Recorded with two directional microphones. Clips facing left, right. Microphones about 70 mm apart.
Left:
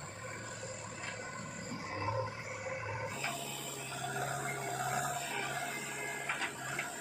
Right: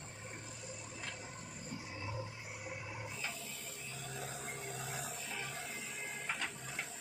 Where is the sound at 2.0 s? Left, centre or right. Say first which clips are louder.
Left 10 dB; left.